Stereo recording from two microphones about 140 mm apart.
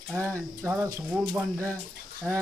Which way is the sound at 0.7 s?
20° right (ahead or behind).